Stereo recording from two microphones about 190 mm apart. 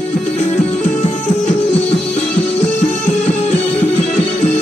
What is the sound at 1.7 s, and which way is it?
Music, 5° left (ahead or behind).